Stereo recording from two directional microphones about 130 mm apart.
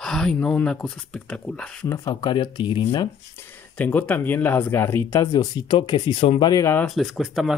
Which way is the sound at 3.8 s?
10° left (ahead or behind).